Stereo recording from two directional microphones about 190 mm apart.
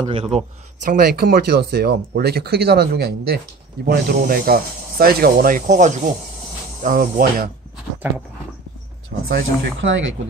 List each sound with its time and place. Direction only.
0.0 s speech: 30° right (ahead or behind)
0.8 s speech: 55° right (ahead or behind)
9.3 s speech: 80° right